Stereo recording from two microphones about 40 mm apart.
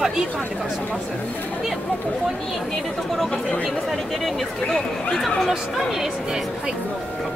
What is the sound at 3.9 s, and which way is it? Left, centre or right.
Speech, centre.